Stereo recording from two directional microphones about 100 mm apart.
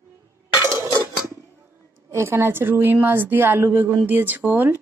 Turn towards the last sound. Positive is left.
turn(degrees=-20)  # may be behind; listen again after turning